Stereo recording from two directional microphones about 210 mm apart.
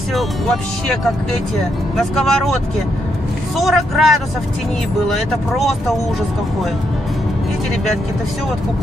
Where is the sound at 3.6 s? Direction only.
Centre (ahead or behind).